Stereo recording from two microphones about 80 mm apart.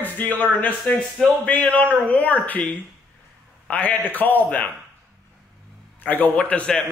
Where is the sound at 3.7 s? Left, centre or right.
Centre.